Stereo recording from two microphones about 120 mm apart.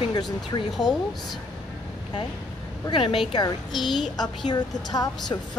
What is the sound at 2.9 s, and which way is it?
Speech, 45° left (ahead or behind).